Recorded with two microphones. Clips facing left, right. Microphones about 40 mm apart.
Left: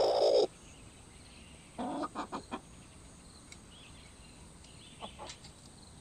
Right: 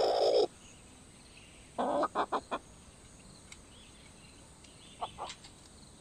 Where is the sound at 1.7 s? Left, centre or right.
Right.